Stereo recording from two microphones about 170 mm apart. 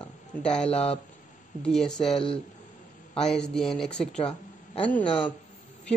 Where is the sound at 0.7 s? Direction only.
35° left (ahead or behind).